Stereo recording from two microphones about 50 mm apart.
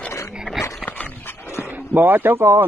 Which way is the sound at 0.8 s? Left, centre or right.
Left.